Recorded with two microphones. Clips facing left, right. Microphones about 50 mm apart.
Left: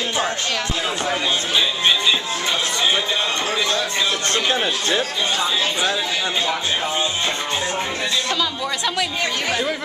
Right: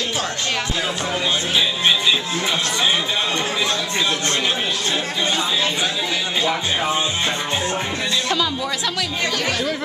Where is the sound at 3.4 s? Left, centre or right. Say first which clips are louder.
Left 1 dB; centre.